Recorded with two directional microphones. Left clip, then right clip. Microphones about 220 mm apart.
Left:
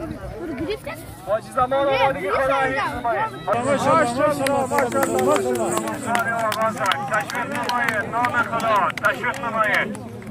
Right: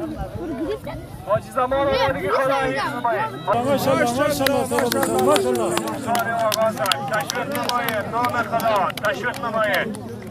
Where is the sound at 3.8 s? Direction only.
20° left (ahead or behind).